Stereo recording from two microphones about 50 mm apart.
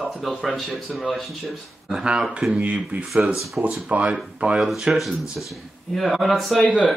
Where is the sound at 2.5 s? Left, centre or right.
Right.